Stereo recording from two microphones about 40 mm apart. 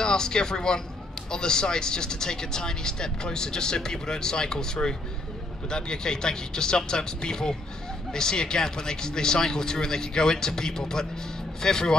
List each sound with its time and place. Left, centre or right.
0.0 s speech: centre